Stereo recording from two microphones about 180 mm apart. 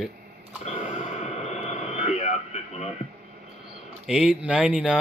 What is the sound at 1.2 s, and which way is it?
Radio, 40° left (ahead or behind).